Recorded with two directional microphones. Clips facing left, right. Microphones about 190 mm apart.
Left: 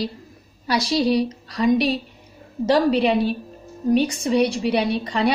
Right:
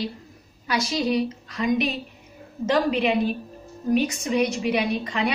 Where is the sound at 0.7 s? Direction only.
35° left (ahead or behind).